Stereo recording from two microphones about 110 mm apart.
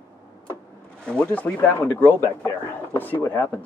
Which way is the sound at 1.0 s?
10° left (ahead or behind).